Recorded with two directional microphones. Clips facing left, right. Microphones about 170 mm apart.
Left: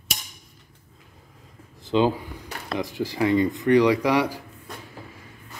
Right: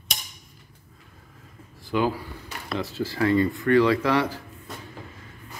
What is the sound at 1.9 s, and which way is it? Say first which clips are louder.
Speech: left 3 dB; 20° left (ahead or behind).